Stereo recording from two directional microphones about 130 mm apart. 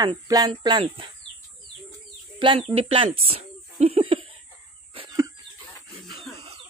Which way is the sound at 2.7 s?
50° right (ahead or behind).